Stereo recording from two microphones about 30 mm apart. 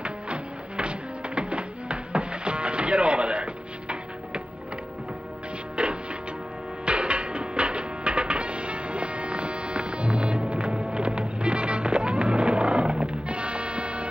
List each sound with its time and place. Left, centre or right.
0.0 s music: right
5.8 s music: right